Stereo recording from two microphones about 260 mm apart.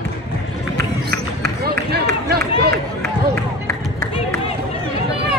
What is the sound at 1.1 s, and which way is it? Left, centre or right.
Run, right.